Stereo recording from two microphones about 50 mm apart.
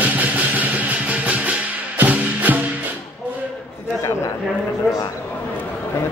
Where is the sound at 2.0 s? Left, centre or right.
Right.